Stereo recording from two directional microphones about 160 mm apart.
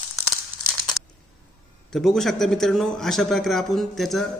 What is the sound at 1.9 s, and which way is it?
A man's voice, centre (ahead or behind).